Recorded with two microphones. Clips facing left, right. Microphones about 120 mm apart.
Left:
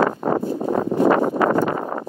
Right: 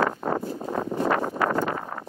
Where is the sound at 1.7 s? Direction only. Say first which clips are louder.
Left 7 dB; 30° left (ahead or behind).